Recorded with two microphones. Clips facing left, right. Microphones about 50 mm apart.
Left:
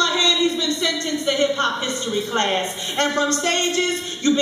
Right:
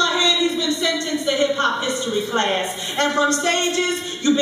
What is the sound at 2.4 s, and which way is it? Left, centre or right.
Speech, centre.